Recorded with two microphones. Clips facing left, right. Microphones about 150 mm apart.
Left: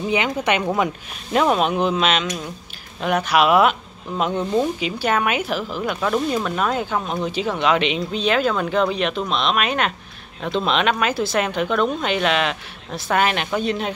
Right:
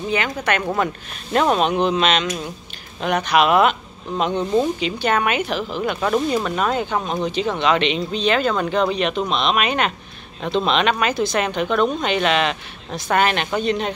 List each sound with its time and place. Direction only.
0.1 s speech: 20° left (ahead or behind)
1.3 s speech: centre (ahead or behind)